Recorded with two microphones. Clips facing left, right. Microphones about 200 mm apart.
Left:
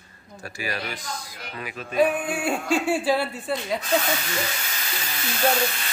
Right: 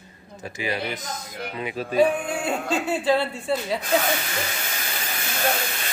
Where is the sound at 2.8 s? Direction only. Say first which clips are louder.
Right 3 dB; 10° left (ahead or behind).